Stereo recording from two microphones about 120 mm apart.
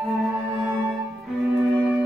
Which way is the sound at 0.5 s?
25° right (ahead or behind).